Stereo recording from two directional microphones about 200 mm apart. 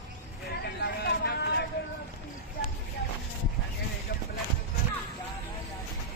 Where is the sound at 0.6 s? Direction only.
55° left (ahead or behind).